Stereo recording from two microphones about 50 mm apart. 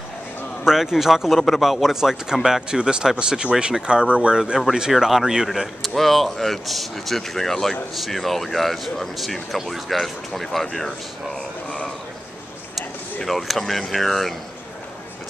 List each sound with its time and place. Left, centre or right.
0.7 s speech: centre
13.2 s speech: centre